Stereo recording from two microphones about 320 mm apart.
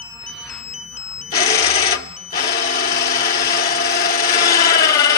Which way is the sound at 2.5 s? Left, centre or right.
Left.